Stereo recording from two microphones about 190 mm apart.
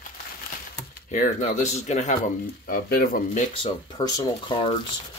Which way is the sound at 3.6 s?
25° left (ahead or behind).